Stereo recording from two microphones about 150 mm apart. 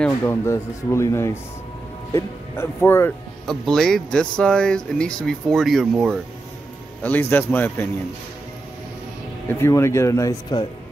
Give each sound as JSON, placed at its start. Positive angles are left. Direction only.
{"t": 0.0, "sound": "speech", "side_deg": 15}
{"t": 3.4, "sound": "speech", "side_deg": 0}
{"t": 7.0, "sound": "speech", "side_deg": 10}
{"t": 9.5, "sound": "speech", "side_deg": 15}